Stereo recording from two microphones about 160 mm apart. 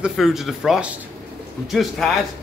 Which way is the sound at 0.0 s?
Centre (ahead or behind).